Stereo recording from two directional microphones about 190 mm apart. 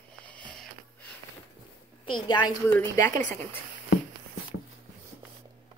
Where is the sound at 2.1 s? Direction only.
25° left (ahead or behind).